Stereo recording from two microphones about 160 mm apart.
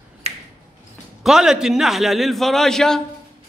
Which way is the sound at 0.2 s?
40° right (ahead or behind).